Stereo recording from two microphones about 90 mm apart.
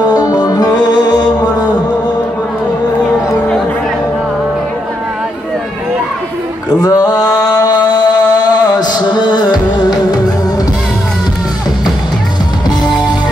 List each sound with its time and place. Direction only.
0.0 s music: 45° left (ahead or behind)
6.8 s a sound: 45° left (ahead or behind)
7.5 s music: 45° left (ahead or behind)